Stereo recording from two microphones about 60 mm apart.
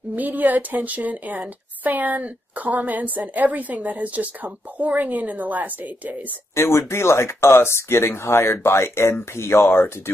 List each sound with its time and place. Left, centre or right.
0.1 s a woman's voice: right
6.5 s speech: left